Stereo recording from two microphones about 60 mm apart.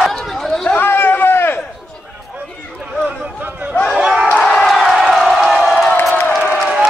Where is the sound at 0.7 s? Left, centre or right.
Left.